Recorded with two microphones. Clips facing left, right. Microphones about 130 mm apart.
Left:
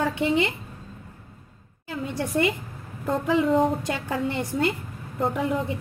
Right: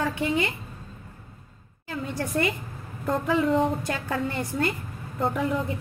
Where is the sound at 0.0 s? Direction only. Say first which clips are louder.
Left 3 dB; 25° left (ahead or behind).